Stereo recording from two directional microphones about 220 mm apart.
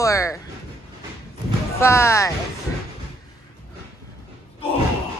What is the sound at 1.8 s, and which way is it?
Speech, 10° left (ahead or behind).